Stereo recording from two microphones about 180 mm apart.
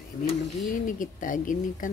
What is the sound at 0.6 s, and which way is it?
Speech, 45° left (ahead or behind).